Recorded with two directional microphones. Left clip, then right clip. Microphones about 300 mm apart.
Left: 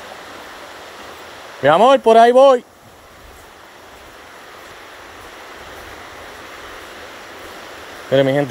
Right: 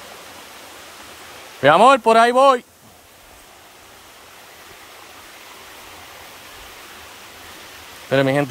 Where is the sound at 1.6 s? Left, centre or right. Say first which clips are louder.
Left 1 dB; centre.